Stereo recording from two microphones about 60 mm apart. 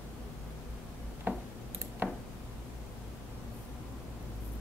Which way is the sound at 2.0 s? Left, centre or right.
Right.